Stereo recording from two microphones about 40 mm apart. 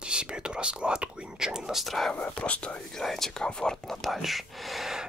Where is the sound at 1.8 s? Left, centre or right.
Centre.